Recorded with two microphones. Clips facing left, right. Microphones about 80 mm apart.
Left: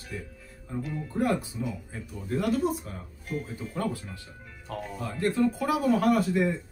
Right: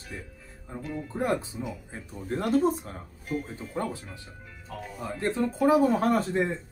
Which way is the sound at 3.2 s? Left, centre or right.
Centre.